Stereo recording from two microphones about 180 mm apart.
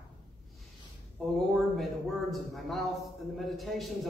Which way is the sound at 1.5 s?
Centre (ahead or behind).